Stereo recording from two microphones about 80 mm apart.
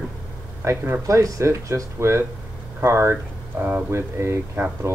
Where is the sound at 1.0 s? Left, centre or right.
Right.